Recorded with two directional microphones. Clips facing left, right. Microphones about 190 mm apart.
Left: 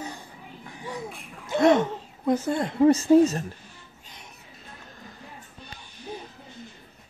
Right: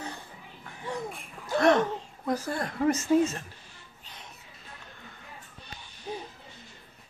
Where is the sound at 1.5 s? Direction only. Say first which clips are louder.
Left 3 dB; 20° left (ahead or behind); by 3.5 s 40° left (ahead or behind).